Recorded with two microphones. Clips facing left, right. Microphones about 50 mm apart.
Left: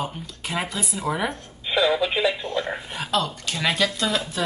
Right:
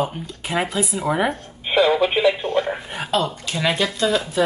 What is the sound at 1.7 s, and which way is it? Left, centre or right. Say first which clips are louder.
Telephone: right 4 dB; right.